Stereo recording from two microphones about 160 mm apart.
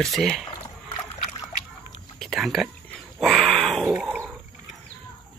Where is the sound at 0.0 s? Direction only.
Centre (ahead or behind).